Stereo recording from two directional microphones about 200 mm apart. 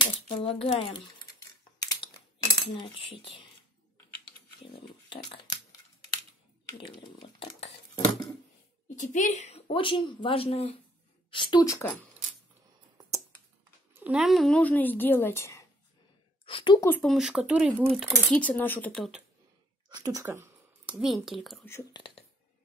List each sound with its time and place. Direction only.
0.0 s speech: 30° left (ahead or behind)
1.8 s typing: 20° left (ahead or behind)
2.6 s speech: 25° left (ahead or behind)
5.1 s a sound: 25° left (ahead or behind)
6.8 s speech: 25° left (ahead or behind)
8.8 s a woman's voice: 40° left (ahead or behind); by 11.9 s 15° left (ahead or behind)
13.9 s speech: 5° right (ahead or behind); by 15.6 s 15° left (ahead or behind)
16.4 s a woman's voice: 25° left (ahead or behind)
16.9 s speech: centre (ahead or behind)
19.9 s speech: 20° right (ahead or behind); by 21.5 s centre (ahead or behind)
21.6 s speech: 15° left (ahead or behind)